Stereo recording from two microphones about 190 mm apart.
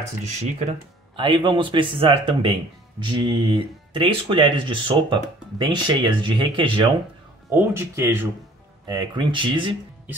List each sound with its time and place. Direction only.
0.2 s speech: 35° right (ahead or behind)
7.5 s speech: 10° right (ahead or behind)